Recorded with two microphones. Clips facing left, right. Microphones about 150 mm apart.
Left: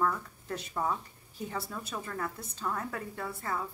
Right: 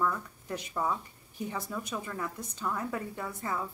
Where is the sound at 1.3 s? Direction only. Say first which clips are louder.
Right 2 dB; 15° right (ahead or behind).